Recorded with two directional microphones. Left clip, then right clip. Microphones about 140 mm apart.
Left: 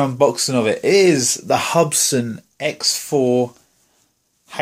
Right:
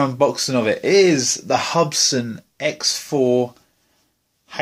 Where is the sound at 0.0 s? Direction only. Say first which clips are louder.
Left 2 dB; 15° left (ahead or behind).